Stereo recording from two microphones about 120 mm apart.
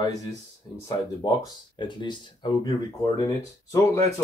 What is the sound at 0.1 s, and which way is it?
Speech, 70° right (ahead or behind).